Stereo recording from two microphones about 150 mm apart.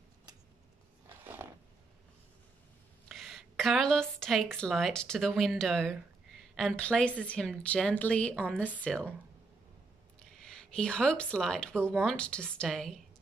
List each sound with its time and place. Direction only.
1.0 s a sound: 15° right (ahead or behind)
3.1 s a woman's voice: centre (ahead or behind)
10.3 s speech: 5° left (ahead or behind)